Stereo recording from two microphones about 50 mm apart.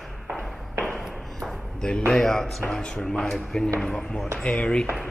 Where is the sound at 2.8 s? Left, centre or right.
Left.